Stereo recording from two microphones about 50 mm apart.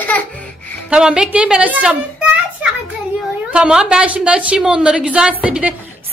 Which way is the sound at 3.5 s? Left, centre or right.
Centre.